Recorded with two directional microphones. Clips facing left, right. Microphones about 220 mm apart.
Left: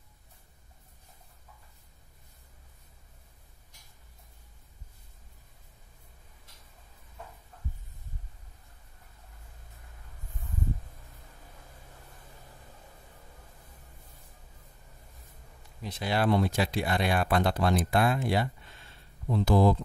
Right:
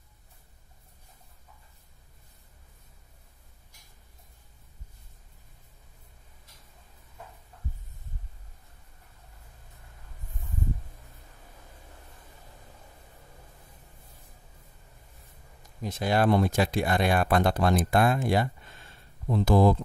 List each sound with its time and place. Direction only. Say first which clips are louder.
15.8 s speech: right 4 dB; 45° right (ahead or behind)